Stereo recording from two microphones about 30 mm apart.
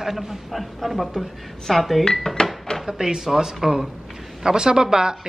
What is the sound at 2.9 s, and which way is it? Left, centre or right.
Speech, centre.